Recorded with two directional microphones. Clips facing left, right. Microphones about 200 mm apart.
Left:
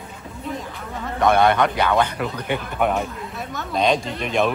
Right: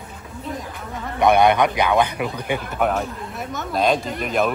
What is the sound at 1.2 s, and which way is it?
A man's voice, 15° right (ahead or behind).